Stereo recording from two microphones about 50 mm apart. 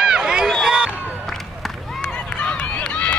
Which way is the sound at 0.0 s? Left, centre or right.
Centre.